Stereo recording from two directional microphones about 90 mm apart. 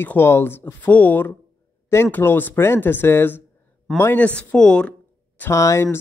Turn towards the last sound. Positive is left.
turn(degrees=30)  # may be behind; listen again after turning